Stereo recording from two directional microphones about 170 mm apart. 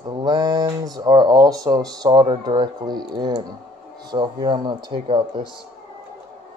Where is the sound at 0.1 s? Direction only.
25° right (ahead or behind).